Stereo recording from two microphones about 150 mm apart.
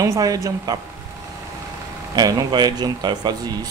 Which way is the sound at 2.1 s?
30° right (ahead or behind).